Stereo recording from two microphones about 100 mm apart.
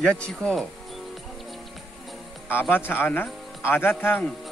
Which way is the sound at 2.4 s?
20° left (ahead or behind).